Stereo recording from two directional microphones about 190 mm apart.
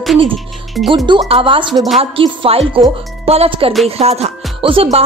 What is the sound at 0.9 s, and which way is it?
A woman's voice, 25° right (ahead or behind).